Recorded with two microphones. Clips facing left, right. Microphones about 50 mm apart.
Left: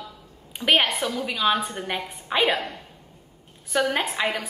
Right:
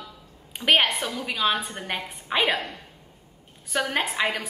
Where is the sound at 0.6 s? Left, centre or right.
Centre.